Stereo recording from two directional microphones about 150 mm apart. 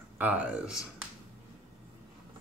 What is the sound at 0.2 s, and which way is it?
Speech, 5° right (ahead or behind).